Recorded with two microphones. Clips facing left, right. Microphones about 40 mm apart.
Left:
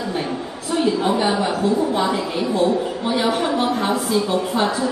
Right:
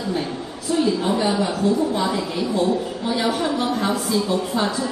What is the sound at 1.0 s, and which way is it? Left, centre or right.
A woman's voice, left.